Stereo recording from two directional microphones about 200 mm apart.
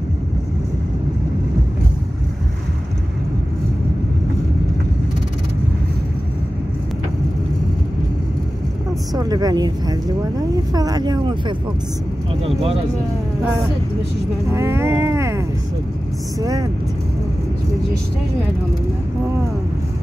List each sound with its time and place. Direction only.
9.1 s a woman's voice: 20° right (ahead or behind)
14.5 s vehicle: 15° right (ahead or behind)
16.3 s a woman's voice: 20° right (ahead or behind)